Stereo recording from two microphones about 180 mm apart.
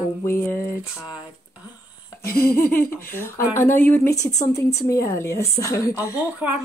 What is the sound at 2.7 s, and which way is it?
Speech, 10° left (ahead or behind).